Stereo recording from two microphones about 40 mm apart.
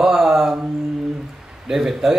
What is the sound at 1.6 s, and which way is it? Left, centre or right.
Speech, centre.